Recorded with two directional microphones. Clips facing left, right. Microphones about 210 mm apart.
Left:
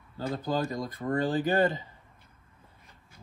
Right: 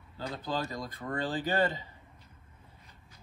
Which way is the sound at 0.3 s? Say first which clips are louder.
Left 5 dB; 50° left (ahead or behind).